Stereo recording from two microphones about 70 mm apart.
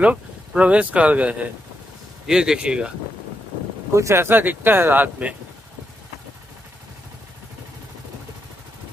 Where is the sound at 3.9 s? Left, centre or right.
Right.